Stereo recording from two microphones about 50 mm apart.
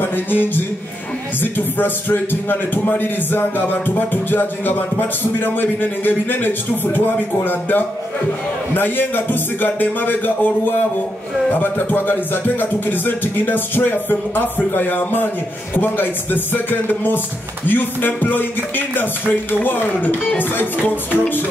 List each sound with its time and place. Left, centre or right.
0.0 s music: left
1.4 s a man's voice: left
8.7 s music: left
11.6 s a man's voice: left
15.7 s music: left